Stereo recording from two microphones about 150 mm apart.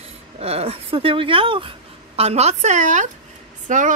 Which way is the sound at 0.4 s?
45° right (ahead or behind).